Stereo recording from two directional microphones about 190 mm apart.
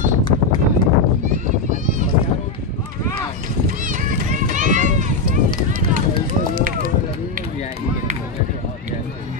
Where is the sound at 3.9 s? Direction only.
40° right (ahead or behind).